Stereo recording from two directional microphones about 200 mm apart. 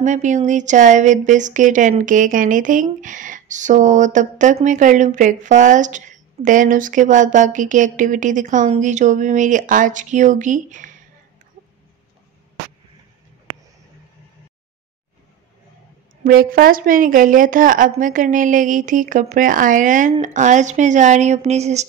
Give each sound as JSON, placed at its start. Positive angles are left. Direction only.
{"t": 0.0, "sound": "speech", "side_deg": -40}
{"t": 16.3, "sound": "speech", "side_deg": -45}